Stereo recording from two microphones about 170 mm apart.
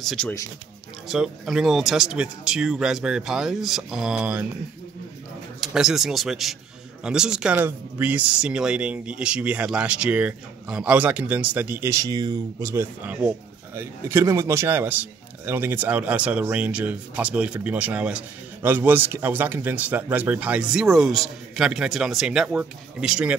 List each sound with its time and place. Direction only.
1.0 s speech: centre (ahead or behind)
5.6 s speech: 5° right (ahead or behind)